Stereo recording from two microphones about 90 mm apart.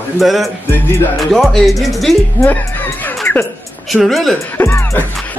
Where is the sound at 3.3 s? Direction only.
25° left (ahead or behind).